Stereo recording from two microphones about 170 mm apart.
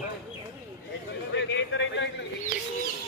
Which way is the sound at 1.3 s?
90° left.